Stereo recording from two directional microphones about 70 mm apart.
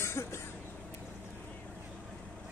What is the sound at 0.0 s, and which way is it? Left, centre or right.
Cough, left.